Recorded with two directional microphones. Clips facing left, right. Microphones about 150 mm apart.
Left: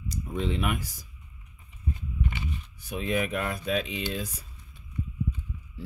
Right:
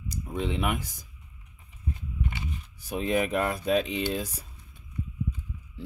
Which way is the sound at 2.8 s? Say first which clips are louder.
Right 2 dB; 35° right (ahead or behind).